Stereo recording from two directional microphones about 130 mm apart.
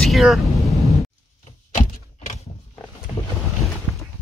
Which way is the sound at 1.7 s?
70° left (ahead or behind).